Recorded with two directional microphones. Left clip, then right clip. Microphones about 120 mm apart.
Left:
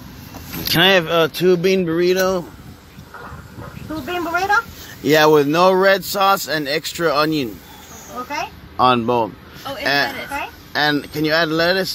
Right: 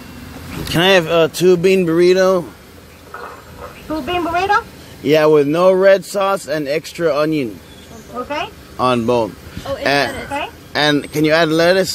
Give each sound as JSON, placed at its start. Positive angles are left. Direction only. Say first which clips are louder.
{"t": 0.7, "sound": "speech", "louder": "right 1 dB", "side_deg": -5}
{"t": 1.8, "sound": "speech", "louder": "right 5 dB", "side_deg": -15}
{"t": 4.0, "sound": "speech", "louder": "right 3 dB", "side_deg": -20}
{"t": 5.1, "sound": "speech", "louder": "right 1 dB", "side_deg": 15}
{"t": 9.8, "sound": "speech", "louder": "right 2 dB", "side_deg": -20}